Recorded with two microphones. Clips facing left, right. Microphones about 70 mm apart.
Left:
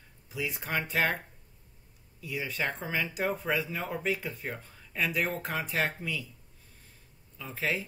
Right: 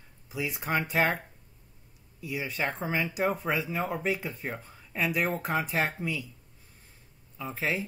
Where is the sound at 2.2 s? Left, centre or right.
Centre.